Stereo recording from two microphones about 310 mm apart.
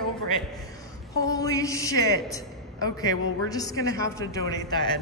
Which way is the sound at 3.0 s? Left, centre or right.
Centre.